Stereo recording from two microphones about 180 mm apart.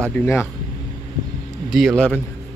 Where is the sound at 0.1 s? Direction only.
10° left (ahead or behind).